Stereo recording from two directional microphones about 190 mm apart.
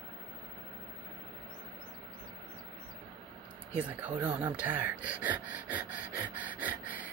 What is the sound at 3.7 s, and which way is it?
Speech, 10° right (ahead or behind).